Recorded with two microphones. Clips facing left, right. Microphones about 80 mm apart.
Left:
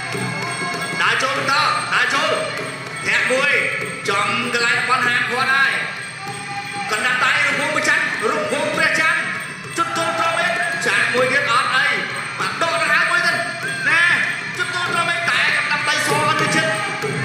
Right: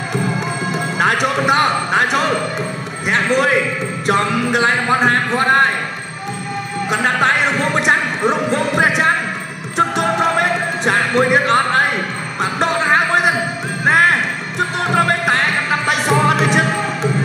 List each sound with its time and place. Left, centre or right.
0.9 s music: right
6.9 s basketball bounce: right
9.8 s music: right